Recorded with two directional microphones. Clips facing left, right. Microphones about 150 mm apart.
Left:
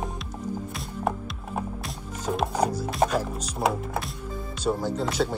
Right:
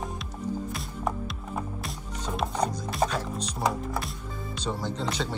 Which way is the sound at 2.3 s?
Centre (ahead or behind).